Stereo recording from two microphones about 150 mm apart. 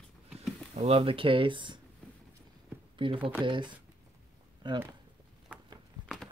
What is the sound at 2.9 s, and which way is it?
Speech, 35° right (ahead or behind).